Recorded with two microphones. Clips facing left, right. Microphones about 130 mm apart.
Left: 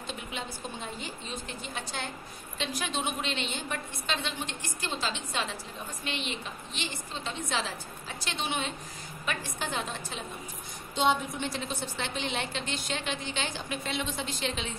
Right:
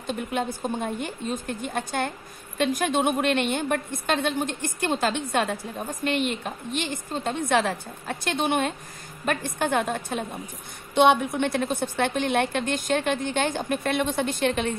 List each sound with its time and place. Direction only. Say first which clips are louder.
0.0 s a woman's voice: right 10 dB; 50° right (ahead or behind)